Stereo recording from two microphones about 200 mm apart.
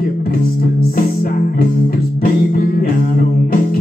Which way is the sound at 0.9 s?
45° left (ahead or behind).